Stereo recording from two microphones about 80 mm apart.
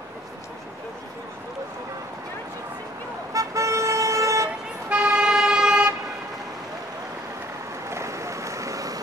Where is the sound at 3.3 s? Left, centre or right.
Right.